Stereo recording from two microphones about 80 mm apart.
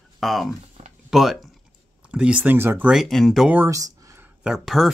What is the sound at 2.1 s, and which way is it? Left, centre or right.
Speech, centre.